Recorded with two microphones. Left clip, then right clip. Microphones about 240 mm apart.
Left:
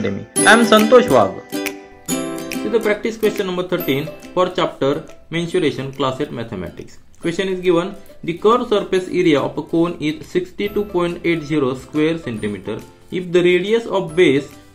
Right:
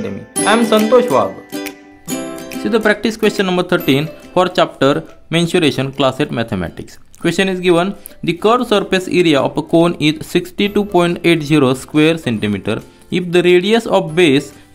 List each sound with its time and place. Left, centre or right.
0.0 s music: centre
2.7 s speech: right